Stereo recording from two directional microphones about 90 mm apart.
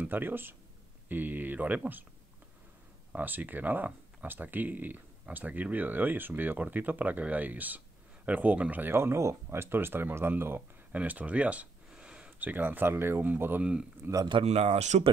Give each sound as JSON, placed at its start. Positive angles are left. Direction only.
{"t": 0.0, "sound": "speech", "side_deg": -20}
{"t": 3.1, "sound": "speech", "side_deg": -20}